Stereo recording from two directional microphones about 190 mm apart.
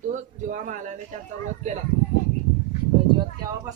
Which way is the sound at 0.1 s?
45° right (ahead or behind).